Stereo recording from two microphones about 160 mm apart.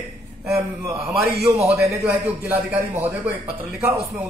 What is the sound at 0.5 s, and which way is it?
A man's voice, 20° right (ahead or behind).